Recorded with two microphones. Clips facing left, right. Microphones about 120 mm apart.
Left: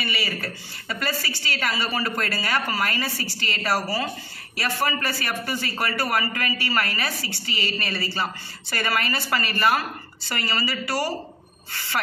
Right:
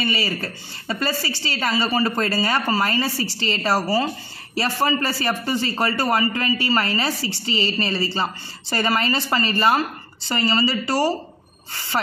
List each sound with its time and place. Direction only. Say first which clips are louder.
0.0 s a man's voice: right 5 dB; 25° right (ahead or behind)